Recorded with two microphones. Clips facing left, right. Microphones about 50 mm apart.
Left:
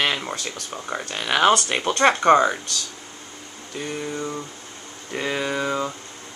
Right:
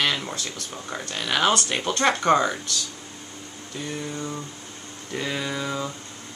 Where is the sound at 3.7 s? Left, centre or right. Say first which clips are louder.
Left 3 dB; left.